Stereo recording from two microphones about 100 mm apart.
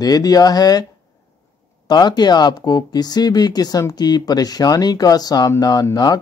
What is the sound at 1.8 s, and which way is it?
Speech, 45° left (ahead or behind).